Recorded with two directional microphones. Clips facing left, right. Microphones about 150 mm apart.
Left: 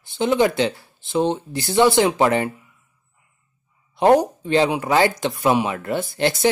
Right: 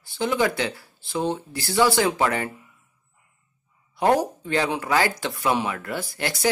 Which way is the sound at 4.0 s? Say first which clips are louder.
Left 5 dB; 20° left (ahead or behind).